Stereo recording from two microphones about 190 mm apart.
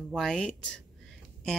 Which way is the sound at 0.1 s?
5° left (ahead or behind).